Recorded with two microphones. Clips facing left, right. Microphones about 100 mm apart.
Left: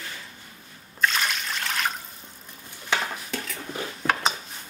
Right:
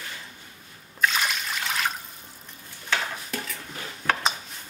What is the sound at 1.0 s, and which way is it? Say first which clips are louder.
Water: even; 5° right (ahead or behind).